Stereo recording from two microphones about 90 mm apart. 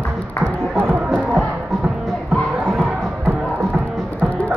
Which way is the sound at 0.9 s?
5° right (ahead or behind).